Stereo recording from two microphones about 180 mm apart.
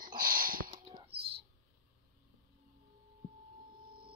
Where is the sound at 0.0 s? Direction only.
50° right (ahead or behind).